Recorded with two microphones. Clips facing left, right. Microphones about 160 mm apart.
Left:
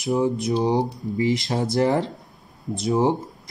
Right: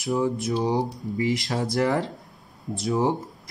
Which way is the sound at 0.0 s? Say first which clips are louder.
Left 3 dB; 20° left (ahead or behind).